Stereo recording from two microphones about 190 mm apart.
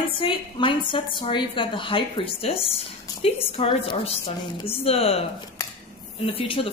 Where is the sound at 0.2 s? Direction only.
25° left (ahead or behind).